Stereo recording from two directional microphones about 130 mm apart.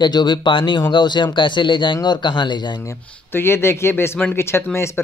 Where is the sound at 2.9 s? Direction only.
20° left (ahead or behind).